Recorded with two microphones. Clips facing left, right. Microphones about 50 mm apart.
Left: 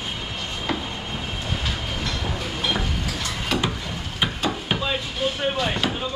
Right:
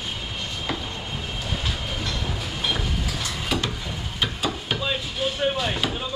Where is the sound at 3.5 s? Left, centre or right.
Centre.